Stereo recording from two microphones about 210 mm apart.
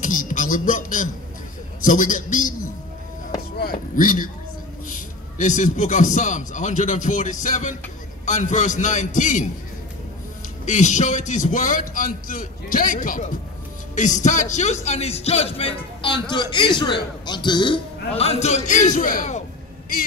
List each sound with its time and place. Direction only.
0.0 s a man's voice: 40° left (ahead or behind)
3.5 s chop: 45° left (ahead or behind)
5.4 s speech: 35° left (ahead or behind)
10.6 s speech: 35° left (ahead or behind)